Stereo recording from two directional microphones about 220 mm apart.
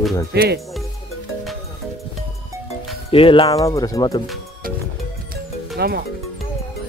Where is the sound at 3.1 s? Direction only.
25° left (ahead or behind).